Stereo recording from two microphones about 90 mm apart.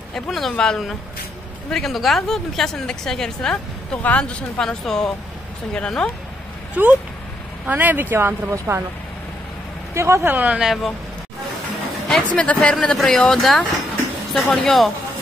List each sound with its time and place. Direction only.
0.1 s a woman's voice: 5° left (ahead or behind)
6.7 s speech: 15° right (ahead or behind)
9.9 s speech: 30° right (ahead or behind)
10.3 s speech: 20° right (ahead or behind)
10.6 s speech: centre (ahead or behind)
12.1 s speech: 10° left (ahead or behind)